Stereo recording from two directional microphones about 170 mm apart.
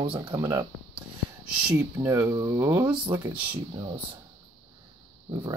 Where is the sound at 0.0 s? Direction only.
30° right (ahead or behind).